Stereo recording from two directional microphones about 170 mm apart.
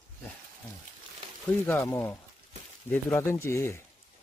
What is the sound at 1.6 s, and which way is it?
Speech, 10° left (ahead or behind).